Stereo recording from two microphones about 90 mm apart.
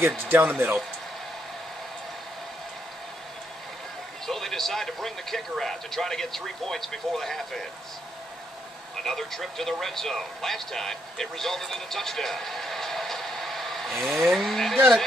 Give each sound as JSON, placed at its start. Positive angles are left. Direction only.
{"t": 0.3, "sound": "speech", "side_deg": -25}
{"t": 4.3, "sound": "speech", "side_deg": 5}
{"t": 9.0, "sound": "speech", "side_deg": 5}